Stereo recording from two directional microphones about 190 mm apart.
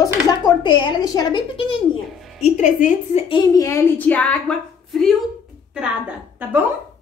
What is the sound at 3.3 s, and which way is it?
Speech, 15° left (ahead or behind).